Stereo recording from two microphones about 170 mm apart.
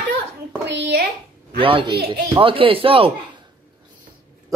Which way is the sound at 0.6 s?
85° right.